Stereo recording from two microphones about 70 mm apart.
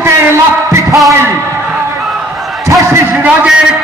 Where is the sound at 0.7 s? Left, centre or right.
Right.